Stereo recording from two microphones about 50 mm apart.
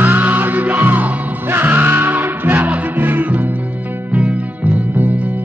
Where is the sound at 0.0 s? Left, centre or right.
Right.